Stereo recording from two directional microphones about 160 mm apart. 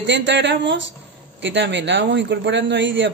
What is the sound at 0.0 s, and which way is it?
Speech, 90° right.